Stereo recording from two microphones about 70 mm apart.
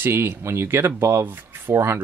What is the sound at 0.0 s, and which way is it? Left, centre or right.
Speech, right.